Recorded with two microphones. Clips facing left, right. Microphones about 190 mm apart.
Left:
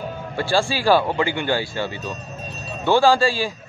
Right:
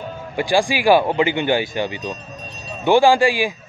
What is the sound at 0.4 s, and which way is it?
Speech, 15° right (ahead or behind).